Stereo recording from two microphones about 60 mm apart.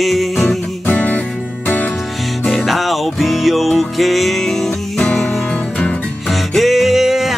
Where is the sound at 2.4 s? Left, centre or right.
Centre.